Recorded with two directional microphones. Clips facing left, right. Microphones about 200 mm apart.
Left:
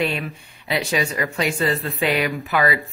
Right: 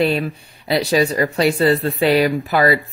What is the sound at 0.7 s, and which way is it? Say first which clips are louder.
Speech: right 6 dB; 35° right (ahead or behind).